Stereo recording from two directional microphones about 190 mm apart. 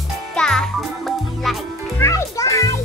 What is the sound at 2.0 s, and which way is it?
Music, 15° left (ahead or behind).